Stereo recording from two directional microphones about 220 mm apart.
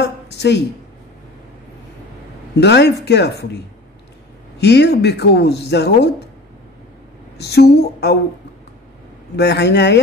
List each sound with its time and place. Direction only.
0.0 s a sound: 50° left (ahead or behind)
2.6 s speech: 50° left (ahead or behind)
4.6 s speech: 50° left (ahead or behind)
7.3 s speech: 50° left (ahead or behind)
9.4 s speech: 50° left (ahead or behind)